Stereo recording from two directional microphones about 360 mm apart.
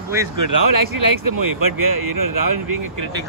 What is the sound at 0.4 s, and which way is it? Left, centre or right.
Speech, right.